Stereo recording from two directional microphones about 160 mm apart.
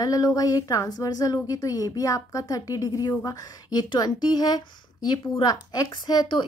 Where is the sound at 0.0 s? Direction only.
25° left (ahead or behind).